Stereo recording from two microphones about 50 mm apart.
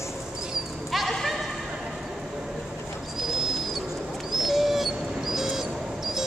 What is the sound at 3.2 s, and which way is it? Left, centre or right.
Bird, centre.